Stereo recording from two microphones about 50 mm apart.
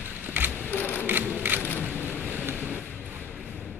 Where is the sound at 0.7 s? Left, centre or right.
Left.